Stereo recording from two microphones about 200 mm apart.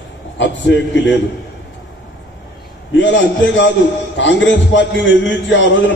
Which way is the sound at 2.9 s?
65° left (ahead or behind).